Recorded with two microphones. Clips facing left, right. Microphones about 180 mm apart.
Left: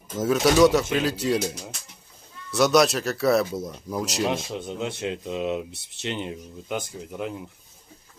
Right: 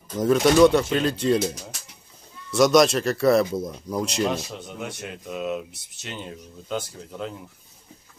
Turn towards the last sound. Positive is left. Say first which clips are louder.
# left 2 dB
turn(degrees=15)  # may be behind; listen again after turning